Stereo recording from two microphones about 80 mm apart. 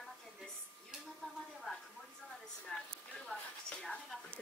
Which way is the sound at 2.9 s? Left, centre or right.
Centre.